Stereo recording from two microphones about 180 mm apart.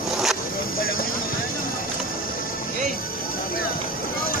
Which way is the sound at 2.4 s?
55° left (ahead or behind).